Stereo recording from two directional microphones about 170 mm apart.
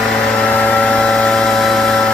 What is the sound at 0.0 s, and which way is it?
Vehicle, centre (ahead or behind).